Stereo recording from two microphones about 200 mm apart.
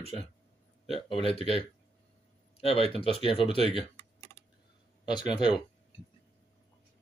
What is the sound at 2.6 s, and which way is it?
Speech, 30° left (ahead or behind).